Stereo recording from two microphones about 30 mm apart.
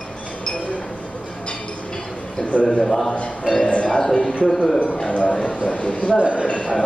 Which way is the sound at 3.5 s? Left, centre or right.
Right.